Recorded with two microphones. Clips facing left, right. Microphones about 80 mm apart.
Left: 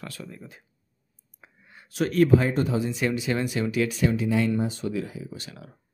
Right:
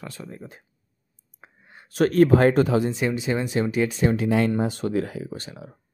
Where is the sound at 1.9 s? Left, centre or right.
Right.